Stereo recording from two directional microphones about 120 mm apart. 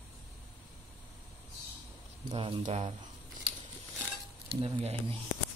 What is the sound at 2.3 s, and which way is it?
Speech, 45° right (ahead or behind).